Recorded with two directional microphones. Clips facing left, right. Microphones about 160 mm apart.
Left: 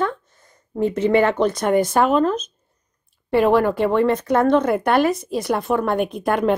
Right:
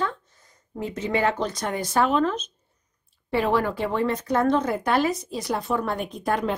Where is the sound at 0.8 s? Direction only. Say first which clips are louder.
Left 8 dB; 60° left (ahead or behind); by 2.5 s 45° left (ahead or behind).